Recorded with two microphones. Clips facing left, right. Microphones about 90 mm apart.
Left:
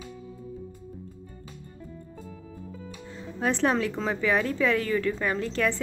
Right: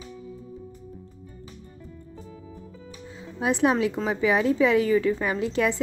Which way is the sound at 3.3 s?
10° right (ahead or behind).